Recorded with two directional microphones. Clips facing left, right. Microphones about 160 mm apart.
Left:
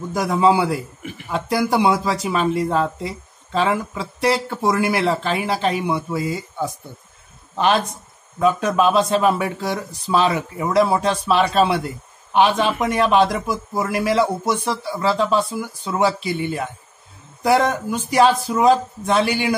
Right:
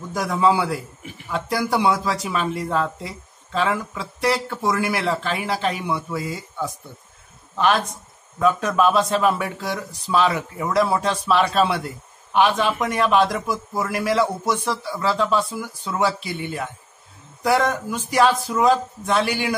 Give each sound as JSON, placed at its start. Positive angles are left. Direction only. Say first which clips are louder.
{"t": 0.1, "sound": "speech", "louder": "left 3 dB", "side_deg": 20}